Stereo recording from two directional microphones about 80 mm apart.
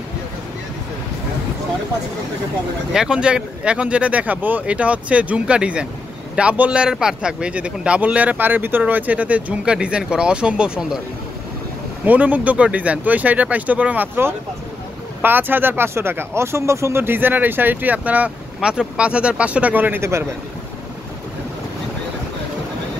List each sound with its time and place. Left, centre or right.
2.9 s a man's voice: centre
12.0 s speech: centre